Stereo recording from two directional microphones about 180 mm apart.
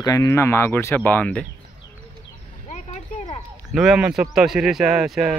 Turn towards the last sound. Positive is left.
turn(degrees=0)  # may be behind; listen again after turning